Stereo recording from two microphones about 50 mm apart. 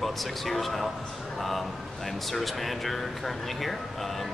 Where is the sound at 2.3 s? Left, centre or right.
Centre.